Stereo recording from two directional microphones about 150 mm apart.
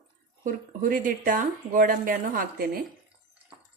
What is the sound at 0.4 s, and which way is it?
Speech, 65° right (ahead or behind).